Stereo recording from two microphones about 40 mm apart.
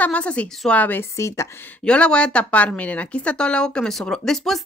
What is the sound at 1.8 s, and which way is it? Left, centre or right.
Speech, left.